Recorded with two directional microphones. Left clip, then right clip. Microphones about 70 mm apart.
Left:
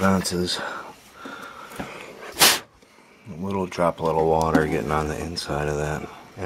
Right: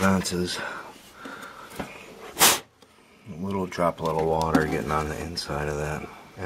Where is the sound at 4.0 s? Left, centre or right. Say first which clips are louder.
Left 4 dB; centre.